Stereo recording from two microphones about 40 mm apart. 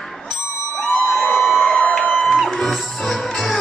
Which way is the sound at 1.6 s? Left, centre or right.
Left.